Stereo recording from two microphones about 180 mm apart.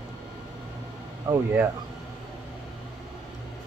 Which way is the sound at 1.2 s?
15° right (ahead or behind).